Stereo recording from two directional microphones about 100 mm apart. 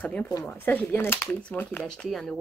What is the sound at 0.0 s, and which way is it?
Speech, 15° left (ahead or behind).